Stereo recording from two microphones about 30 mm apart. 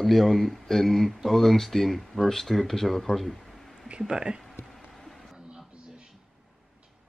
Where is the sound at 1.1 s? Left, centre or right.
Centre.